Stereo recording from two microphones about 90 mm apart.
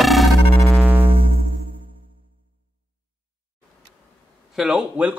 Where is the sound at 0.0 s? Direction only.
Centre (ahead or behind).